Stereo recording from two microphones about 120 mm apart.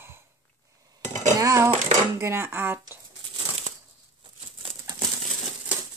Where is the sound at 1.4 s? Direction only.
25° right (ahead or behind).